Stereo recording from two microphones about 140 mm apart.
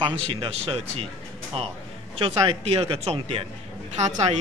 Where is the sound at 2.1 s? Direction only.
45° right (ahead or behind).